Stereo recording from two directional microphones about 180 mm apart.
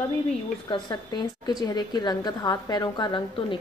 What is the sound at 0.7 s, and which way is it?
A woman's voice, 25° left (ahead or behind).